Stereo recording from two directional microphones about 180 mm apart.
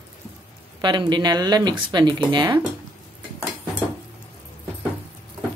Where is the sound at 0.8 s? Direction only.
25° right (ahead or behind).